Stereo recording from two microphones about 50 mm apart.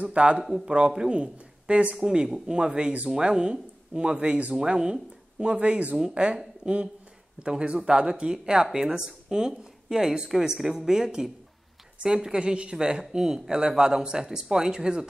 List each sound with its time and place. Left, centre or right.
0.1 s speech: right
2.0 s speech: centre